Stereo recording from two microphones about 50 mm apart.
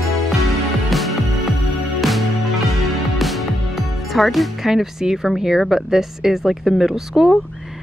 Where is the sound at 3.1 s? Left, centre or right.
Centre.